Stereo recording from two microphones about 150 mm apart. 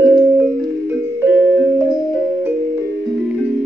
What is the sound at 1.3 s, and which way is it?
Music, 10° right (ahead or behind).